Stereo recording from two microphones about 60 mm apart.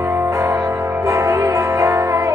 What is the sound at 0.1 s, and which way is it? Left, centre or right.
Music, right.